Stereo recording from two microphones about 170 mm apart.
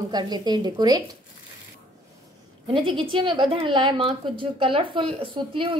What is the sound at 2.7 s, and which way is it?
A woman's voice, 30° right (ahead or behind).